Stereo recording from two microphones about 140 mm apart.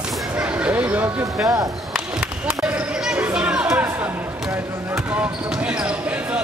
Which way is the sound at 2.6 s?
10° right (ahead or behind).